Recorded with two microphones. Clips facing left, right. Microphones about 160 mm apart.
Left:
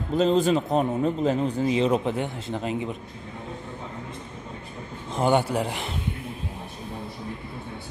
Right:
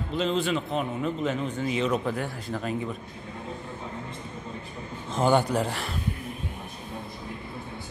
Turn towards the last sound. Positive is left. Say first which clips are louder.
# even
turn(degrees=20)  # may be behind; listen again after turning